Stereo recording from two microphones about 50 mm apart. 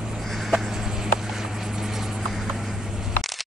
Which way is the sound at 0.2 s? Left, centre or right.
Centre.